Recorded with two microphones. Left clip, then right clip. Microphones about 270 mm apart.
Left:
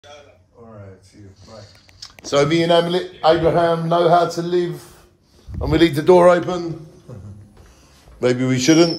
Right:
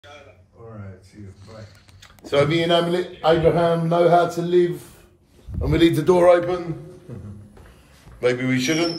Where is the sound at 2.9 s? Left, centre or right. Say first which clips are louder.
Left 3 dB; left.